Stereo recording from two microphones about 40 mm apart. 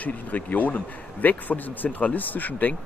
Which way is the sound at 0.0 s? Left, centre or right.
Left.